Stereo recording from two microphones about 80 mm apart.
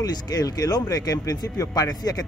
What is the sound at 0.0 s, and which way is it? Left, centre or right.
Speech, left.